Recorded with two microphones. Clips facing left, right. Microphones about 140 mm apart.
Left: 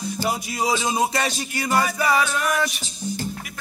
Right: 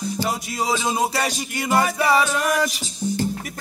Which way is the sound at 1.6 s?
20° right (ahead or behind).